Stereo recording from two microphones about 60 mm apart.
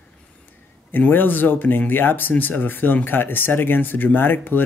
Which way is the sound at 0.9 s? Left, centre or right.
Left.